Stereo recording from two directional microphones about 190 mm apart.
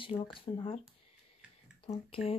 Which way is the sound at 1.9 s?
30° left (ahead or behind).